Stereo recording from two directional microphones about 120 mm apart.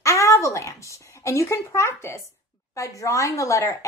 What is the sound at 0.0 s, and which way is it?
A woman's voice, 25° left (ahead or behind).